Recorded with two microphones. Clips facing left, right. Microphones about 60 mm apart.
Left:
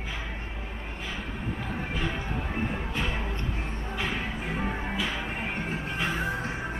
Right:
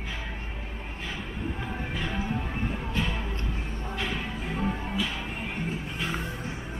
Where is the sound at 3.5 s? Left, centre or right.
Left.